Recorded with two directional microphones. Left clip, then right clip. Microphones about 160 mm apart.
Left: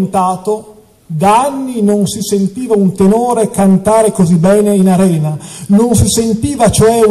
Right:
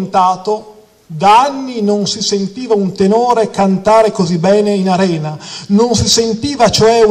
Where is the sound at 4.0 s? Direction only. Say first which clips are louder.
Even; 10° left (ahead or behind).